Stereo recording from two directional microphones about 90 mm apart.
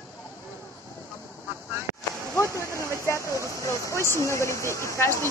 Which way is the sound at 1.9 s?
35° right (ahead or behind).